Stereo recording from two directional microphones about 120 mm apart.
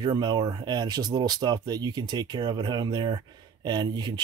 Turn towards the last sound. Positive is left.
turn(degrees=-40)  # may be behind; listen again after turning